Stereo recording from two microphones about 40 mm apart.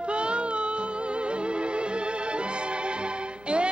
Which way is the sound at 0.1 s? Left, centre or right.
Right.